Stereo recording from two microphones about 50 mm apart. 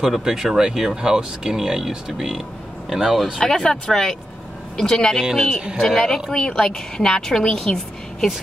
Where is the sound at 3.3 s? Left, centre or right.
Centre.